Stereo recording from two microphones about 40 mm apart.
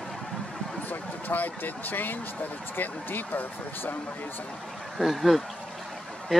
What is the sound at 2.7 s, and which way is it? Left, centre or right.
Speech, left.